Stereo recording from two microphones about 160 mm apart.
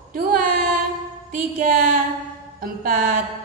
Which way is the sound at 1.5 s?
60° right (ahead or behind).